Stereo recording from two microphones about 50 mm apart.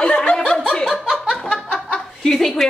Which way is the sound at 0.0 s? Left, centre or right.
Left.